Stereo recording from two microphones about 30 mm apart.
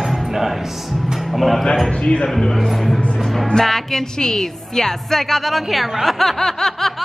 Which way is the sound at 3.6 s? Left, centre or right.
Centre.